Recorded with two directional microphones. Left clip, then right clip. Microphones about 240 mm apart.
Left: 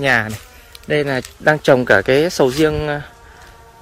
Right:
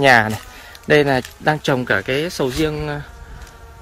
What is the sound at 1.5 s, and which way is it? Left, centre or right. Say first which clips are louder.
Speech: left 6 dB; centre.